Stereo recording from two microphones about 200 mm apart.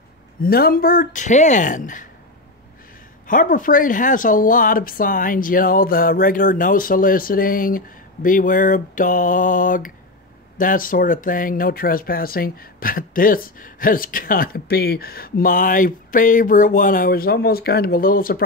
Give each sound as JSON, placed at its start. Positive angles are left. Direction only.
{"t": 0.4, "sound": "speech", "side_deg": 50}
{"t": 3.3, "sound": "speech", "side_deg": 40}